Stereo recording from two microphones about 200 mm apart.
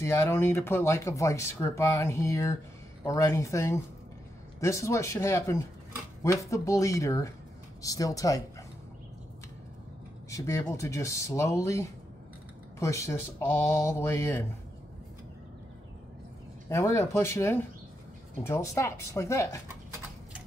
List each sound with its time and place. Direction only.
0.0 s speech: 15° left (ahead or behind)
10.3 s speech: 15° left (ahead or behind)
16.6 s speech: 15° left (ahead or behind)